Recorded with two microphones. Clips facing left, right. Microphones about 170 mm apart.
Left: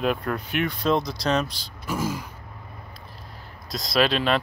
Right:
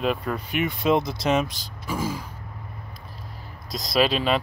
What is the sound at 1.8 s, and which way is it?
Throat clearing, centre (ahead or behind).